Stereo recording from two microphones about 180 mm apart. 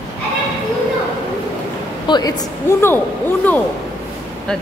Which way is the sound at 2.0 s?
25° left (ahead or behind).